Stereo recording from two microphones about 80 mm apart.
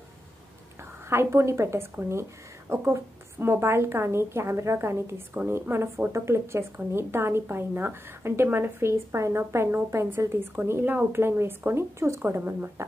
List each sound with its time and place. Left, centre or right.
1.0 s a woman's voice: right